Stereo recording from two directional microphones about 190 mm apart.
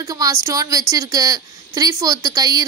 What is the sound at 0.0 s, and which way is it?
A woman's voice, 15° right (ahead or behind).